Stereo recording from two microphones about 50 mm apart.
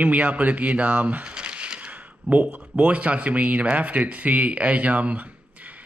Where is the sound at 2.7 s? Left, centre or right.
Right.